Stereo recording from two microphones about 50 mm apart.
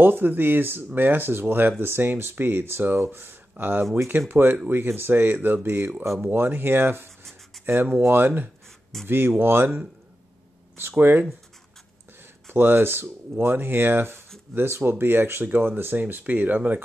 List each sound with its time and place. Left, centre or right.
0.0 s speech: right
10.8 s speech: right